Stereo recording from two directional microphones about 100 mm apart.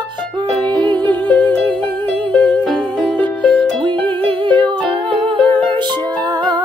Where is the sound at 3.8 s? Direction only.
55° right (ahead or behind).